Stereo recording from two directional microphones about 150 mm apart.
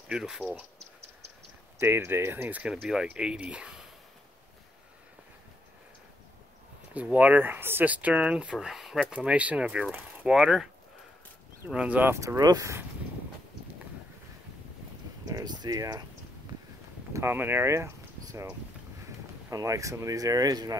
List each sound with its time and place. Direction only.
0.1 s speech: centre (ahead or behind)
1.8 s speech: 15° right (ahead or behind)
6.9 s speech: 10° right (ahead or behind)
15.2 s speech: 25° right (ahead or behind)
17.1 s speech: 15° right (ahead or behind)